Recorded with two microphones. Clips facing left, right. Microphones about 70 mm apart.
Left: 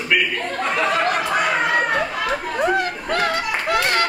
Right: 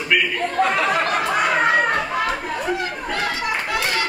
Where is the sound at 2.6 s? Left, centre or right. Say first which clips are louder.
Left 4 dB; left.